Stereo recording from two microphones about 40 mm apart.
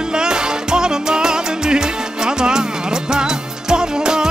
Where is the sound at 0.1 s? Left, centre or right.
Centre.